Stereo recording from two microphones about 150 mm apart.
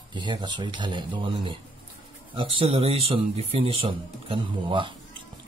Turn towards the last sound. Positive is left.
turn(degrees=-35)  # may be behind; listen again after turning